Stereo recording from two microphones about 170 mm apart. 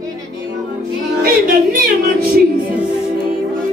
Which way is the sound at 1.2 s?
60° right (ahead or behind).